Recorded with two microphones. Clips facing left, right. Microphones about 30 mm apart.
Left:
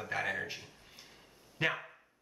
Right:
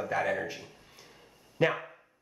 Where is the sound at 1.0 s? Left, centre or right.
Centre.